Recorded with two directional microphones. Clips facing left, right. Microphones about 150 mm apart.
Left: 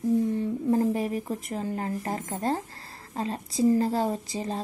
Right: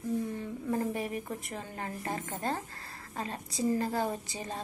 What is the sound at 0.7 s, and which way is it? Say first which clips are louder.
A woman's voice: left 7 dB; 35° left (ahead or behind).